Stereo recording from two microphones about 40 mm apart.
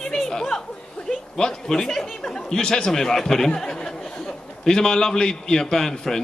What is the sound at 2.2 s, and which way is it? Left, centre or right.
A man's voice, centre.